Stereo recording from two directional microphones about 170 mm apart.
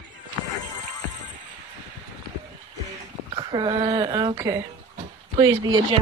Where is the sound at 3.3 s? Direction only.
30° right (ahead or behind).